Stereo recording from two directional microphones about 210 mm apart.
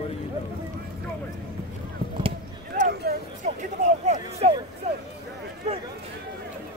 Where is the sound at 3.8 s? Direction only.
35° right (ahead or behind).